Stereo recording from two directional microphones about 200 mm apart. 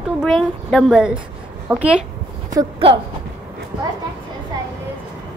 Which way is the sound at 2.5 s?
25° right (ahead or behind).